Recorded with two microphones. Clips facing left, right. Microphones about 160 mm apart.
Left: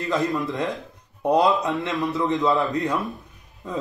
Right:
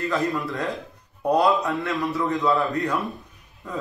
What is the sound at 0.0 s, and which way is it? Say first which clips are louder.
A man's voice: left 1 dB; 20° left (ahead or behind).